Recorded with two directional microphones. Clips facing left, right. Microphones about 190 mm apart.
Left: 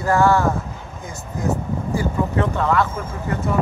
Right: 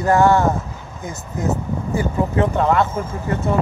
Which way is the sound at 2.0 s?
20° right (ahead or behind).